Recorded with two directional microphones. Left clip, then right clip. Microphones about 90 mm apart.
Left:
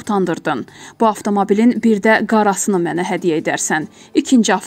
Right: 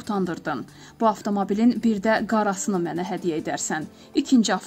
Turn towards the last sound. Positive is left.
turn(degrees=50)  # may be behind; listen again after turning